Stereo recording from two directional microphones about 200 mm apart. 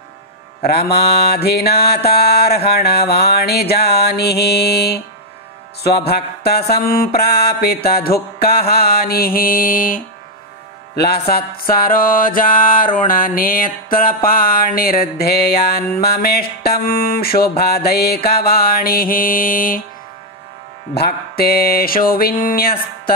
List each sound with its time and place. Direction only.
0.7 s music: 55° left (ahead or behind)
20.9 s music: 50° left (ahead or behind)